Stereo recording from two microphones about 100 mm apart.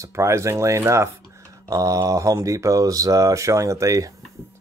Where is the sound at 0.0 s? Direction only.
30° right (ahead or behind).